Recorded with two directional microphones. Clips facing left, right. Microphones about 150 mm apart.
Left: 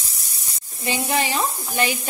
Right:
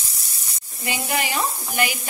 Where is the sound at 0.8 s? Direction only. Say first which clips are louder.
Left 3 dB; 25° left (ahead or behind).